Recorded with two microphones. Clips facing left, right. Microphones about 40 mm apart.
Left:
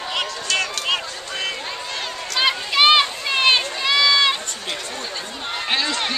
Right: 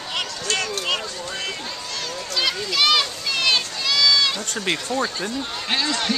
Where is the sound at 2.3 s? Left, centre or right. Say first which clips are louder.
Left 4 dB; left.